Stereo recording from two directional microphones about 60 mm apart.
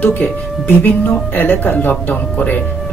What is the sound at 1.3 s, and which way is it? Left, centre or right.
Speech, left.